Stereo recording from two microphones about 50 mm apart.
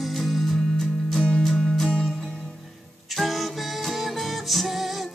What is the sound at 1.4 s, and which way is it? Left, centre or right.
Music, centre.